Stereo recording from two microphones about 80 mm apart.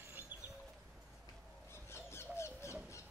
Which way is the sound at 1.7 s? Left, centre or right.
Left.